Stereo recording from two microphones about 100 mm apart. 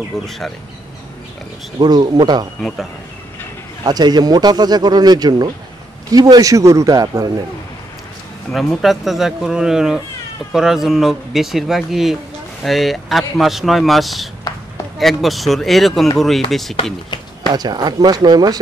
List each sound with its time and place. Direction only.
1.8 s speech: 45° right (ahead or behind)
3.8 s a man's voice: 45° right (ahead or behind)
8.5 s speech: centre (ahead or behind)
17.5 s speech: 45° right (ahead or behind)